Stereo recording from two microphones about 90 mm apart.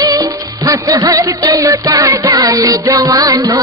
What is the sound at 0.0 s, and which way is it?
Music, 45° right (ahead or behind).